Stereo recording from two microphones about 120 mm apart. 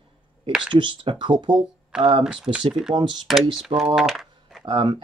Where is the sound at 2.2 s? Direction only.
5° right (ahead or behind).